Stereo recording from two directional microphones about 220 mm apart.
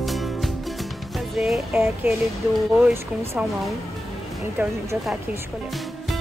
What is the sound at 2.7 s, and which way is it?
Speech, 10° right (ahead or behind).